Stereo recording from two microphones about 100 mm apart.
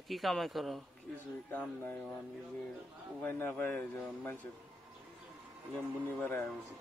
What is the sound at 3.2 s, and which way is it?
A man's voice, 20° left (ahead or behind).